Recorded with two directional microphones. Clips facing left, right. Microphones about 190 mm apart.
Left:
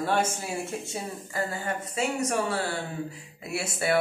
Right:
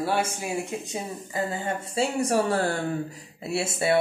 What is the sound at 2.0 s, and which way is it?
Speech, 35° right (ahead or behind).